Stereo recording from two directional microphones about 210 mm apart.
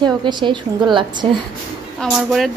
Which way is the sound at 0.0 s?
20° right (ahead or behind).